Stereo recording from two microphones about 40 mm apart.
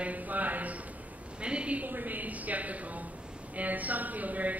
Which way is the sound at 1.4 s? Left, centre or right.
Right.